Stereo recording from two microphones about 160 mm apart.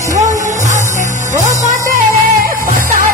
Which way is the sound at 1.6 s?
60° right (ahead or behind).